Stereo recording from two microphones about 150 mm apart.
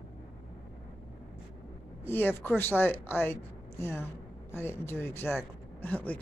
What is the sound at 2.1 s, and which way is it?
Speech, 15° left (ahead or behind).